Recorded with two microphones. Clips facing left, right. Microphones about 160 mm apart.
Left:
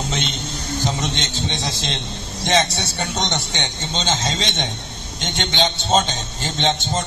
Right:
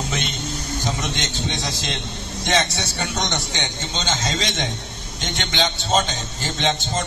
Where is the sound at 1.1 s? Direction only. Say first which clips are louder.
Left 1 dB; 25° left (ahead or behind).